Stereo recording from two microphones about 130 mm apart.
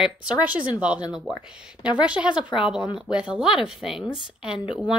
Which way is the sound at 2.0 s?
10° right (ahead or behind).